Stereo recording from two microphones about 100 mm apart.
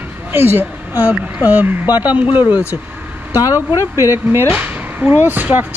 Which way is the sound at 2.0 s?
15° right (ahead or behind).